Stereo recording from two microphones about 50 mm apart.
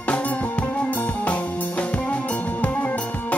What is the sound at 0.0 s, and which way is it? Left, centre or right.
Music, left.